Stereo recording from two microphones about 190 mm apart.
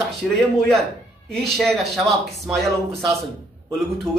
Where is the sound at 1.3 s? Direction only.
Centre (ahead or behind).